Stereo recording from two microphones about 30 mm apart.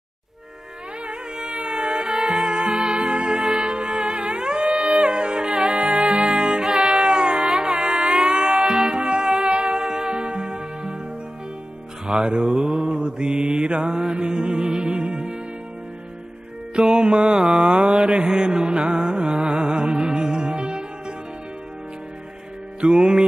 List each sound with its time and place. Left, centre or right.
1.0 s music: right
6.2 s music: right
9.5 s music: right
9.8 s music: right
12.1 s music: right
12.5 s mantra: right
14.1 s music: right
16.7 s music: right
17.2 s a sound: right
17.6 s mantra: right
18.1 s music: right
22.8 s music: right